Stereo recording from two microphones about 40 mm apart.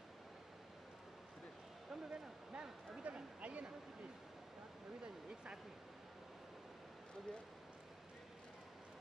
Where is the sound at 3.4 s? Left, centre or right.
Right.